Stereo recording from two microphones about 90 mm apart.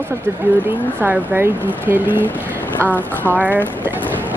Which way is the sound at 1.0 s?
25° right (ahead or behind).